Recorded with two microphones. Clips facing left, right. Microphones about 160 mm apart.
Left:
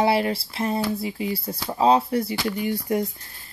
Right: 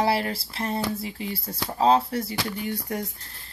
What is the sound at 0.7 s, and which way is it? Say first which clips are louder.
Speech: left 3 dB; 10° left (ahead or behind).